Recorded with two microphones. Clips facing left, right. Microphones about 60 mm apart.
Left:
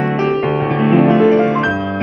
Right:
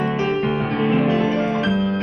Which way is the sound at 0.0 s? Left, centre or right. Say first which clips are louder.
Left 5 dB; left.